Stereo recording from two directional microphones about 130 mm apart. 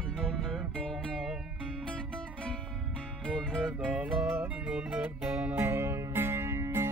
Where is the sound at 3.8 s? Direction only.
10° right (ahead or behind).